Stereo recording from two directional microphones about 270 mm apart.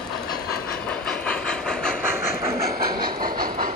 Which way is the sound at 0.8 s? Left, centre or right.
Centre.